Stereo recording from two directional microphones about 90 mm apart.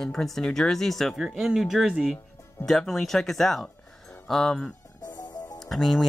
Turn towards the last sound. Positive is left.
turn(degrees=0)  # may be behind; listen again after turning